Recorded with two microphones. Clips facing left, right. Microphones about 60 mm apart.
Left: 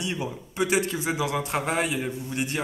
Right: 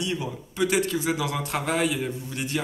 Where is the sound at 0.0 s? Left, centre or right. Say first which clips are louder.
Right 1 dB; left.